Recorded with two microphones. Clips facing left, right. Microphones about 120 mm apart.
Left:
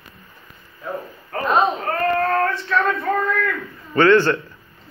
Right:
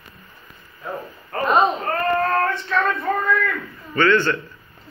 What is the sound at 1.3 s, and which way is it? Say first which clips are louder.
Speech: right 1 dB; centre (ahead or behind).